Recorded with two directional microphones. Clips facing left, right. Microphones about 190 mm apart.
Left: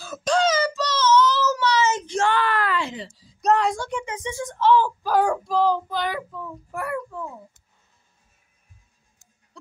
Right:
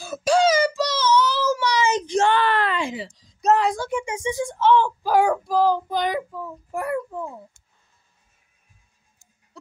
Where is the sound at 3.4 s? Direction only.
5° right (ahead or behind).